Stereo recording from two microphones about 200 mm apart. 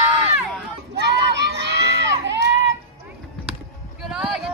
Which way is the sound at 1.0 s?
55° right (ahead or behind).